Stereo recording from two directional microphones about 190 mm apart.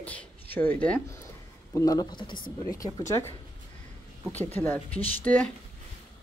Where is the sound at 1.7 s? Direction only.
20° left (ahead or behind).